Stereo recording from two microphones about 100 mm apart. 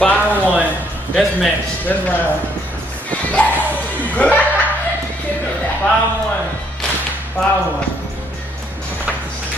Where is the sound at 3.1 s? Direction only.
15° left (ahead or behind).